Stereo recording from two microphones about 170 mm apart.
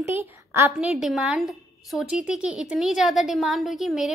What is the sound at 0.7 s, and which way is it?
A woman's voice, centre (ahead or behind).